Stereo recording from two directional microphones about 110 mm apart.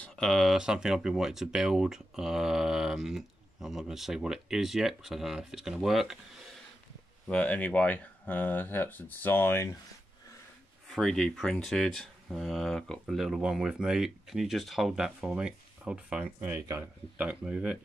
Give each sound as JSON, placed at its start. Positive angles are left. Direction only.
{"t": 0.0, "sound": "speech", "side_deg": 5}
{"t": 7.2, "sound": "speech", "side_deg": 15}
{"t": 10.9, "sound": "speech", "side_deg": 5}